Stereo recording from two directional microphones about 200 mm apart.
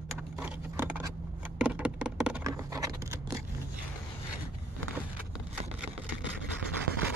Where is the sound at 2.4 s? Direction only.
15° right (ahead or behind).